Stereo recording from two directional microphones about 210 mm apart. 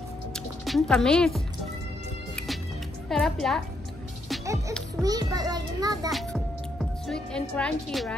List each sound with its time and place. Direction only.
0.3 s music: centre (ahead or behind)
3.1 s a woman's voice: centre (ahead or behind)
5.0 s a child's voice: 20° right (ahead or behind)
6.1 s a woman's voice: centre (ahead or behind)